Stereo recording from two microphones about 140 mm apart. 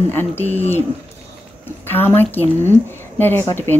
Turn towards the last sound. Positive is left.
turn(degrees=15)  # may be behind; listen again after turning